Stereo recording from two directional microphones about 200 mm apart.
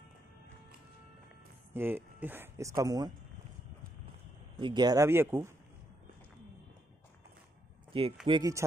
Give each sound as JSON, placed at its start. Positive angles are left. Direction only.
{"t": 1.7, "sound": "speech", "side_deg": -10}
{"t": 4.6, "sound": "speech", "side_deg": -20}
{"t": 7.9, "sound": "speech", "side_deg": -25}